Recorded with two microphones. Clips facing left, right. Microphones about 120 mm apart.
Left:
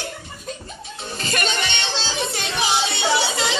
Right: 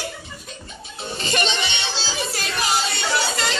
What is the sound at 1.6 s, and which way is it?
Music, 10° right (ahead or behind).